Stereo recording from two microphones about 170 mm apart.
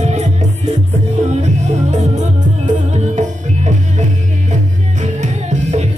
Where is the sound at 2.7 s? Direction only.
45° right (ahead or behind).